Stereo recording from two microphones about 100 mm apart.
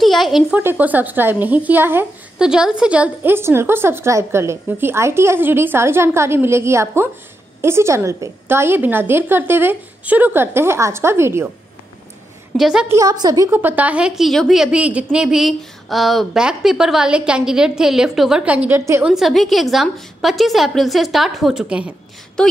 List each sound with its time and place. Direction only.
0.0 s a woman's voice: centre (ahead or behind)
0.6 s a woman's voice: 20° right (ahead or behind)
2.3 s a woman's voice: 5° right (ahead or behind); by 11.5 s 25° right (ahead or behind)
12.5 s a woman's voice: 5° right (ahead or behind)
13.0 s a woman's voice: 45° right (ahead or behind)
13.5 s a woman's voice: 20° right (ahead or behind)
19.0 s a woman's voice: centre (ahead or behind)
22.4 s speech: 5° left (ahead or behind)